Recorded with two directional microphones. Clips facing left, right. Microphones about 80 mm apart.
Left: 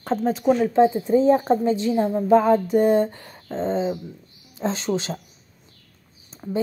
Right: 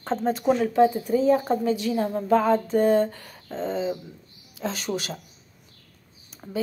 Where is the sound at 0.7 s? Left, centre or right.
Left.